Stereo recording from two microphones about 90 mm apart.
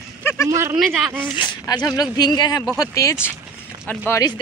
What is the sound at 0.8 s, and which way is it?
Speech, 5° right (ahead or behind).